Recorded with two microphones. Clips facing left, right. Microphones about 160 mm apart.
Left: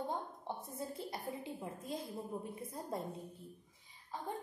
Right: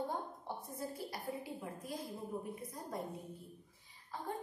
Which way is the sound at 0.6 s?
25° left (ahead or behind).